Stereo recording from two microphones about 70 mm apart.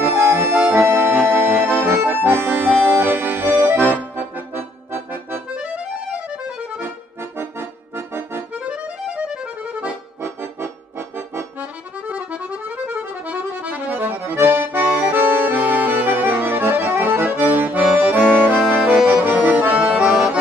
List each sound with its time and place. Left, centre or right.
0.0 s accordion: right
5.6 s accordion: centre
7.3 s accordion: right
8.6 s accordion: centre
10.2 s accordion: right
12.1 s accordion: right